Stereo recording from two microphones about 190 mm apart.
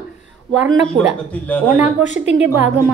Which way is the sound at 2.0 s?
40° left (ahead or behind).